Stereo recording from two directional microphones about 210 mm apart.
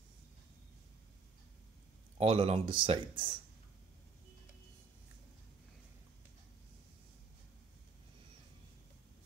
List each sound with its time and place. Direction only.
2.1 s speech: 25° right (ahead or behind)